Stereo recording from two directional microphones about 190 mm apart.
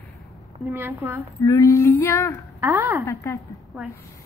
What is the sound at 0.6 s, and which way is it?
Speech, 10° right (ahead or behind).